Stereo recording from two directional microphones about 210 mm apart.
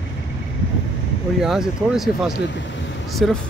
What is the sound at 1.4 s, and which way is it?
Speech, centre (ahead or behind).